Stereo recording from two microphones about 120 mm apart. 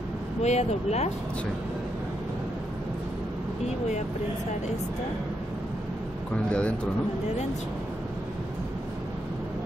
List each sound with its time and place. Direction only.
0.4 s speech: 65° left (ahead or behind)
6.3 s speech: 10° left (ahead or behind)